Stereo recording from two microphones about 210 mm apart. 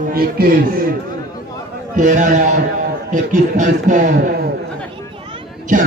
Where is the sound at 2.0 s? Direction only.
35° right (ahead or behind).